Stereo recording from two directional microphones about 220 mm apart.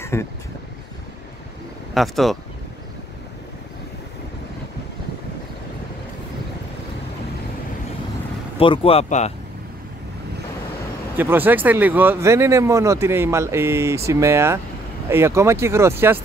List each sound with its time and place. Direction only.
0.0 s a sound: 10° left (ahead or behind)
2.0 s speech: centre (ahead or behind)
8.5 s speech: 25° left (ahead or behind)
11.1 s speech: 10° right (ahead or behind)